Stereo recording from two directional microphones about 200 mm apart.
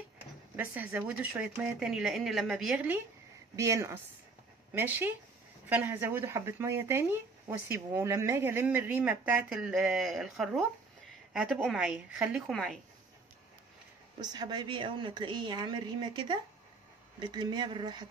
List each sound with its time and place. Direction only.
0.6 s speech: 5° right (ahead or behind)
3.5 s speech: 15° right (ahead or behind); by 12.7 s centre (ahead or behind)
14.2 s a woman's voice: 20° right (ahead or behind)